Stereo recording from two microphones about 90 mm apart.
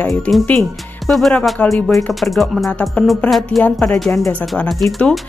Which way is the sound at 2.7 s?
15° left (ahead or behind).